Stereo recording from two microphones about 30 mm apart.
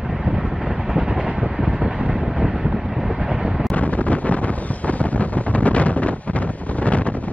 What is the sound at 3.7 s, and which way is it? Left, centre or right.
Wind noise, left.